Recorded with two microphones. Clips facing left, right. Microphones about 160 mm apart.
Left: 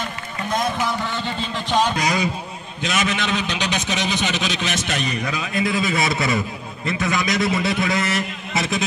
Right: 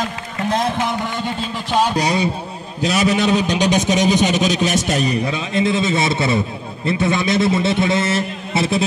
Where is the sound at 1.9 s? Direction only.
30° right (ahead or behind).